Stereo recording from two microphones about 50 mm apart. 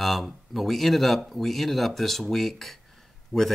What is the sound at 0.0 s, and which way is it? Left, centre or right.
Speech, centre.